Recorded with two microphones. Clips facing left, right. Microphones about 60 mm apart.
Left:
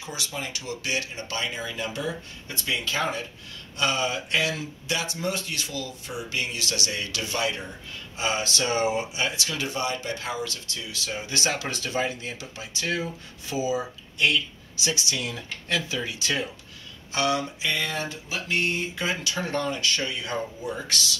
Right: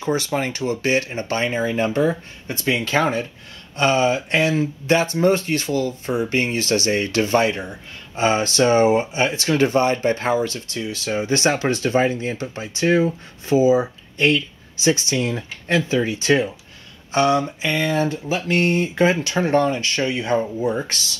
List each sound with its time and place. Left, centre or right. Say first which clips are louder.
0.0 s speech: right 12 dB; right
19.2 s speech: right 10 dB; right